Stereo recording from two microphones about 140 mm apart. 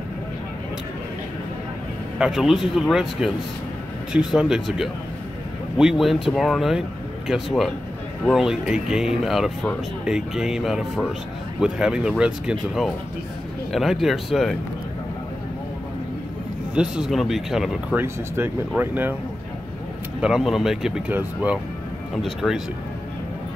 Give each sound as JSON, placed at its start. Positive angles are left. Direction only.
{"t": 2.1, "sound": "speech", "side_deg": -5}
{"t": 16.7, "sound": "speech", "side_deg": -5}
{"t": 17.9, "sound": "speech", "side_deg": -15}
{"t": 20.2, "sound": "speech", "side_deg": -5}
{"t": 22.1, "sound": "speech", "side_deg": 0}